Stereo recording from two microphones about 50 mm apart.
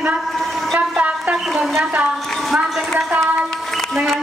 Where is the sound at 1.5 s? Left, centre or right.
Centre.